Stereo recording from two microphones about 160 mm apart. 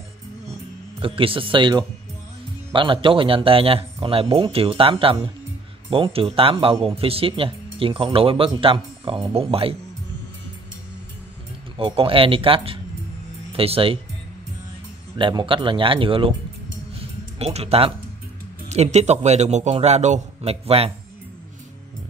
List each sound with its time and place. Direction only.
0.9 s speech: 35° right (ahead or behind)
6.1 s speech: 35° right (ahead or behind)
11.7 s speech: 35° right (ahead or behind)
15.1 s speech: 30° right (ahead or behind)
17.4 s speech: 40° right (ahead or behind)